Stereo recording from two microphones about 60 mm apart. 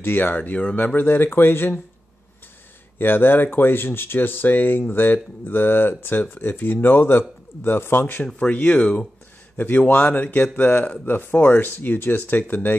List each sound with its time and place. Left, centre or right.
0.0 s speech: left
3.0 s speech: left
8.3 s speech: left